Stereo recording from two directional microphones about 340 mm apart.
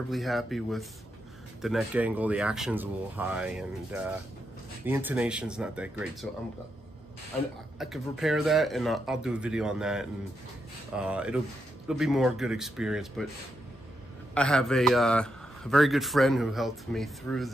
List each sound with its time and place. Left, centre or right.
0.1 s a man's voice: centre
7.8 s a man's voice: centre
14.3 s a man's voice: centre